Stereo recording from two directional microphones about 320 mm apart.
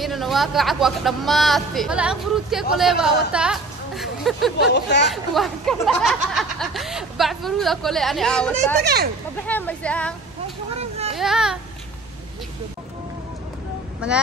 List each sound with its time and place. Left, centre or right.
0.0 s speech: centre
4.6 s speech: left
5.0 s speech: centre
8.8 s speech: right
9.5 s speech: centre
10.8 s a sound: centre
11.1 s speech: centre
14.0 s speech: centre